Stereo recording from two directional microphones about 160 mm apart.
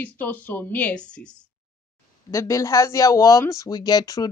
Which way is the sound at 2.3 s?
20° left (ahead or behind).